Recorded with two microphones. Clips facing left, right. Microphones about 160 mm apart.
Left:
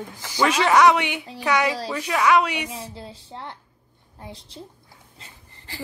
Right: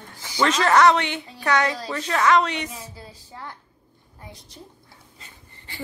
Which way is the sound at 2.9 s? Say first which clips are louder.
Left 4 dB; 25° left (ahead or behind).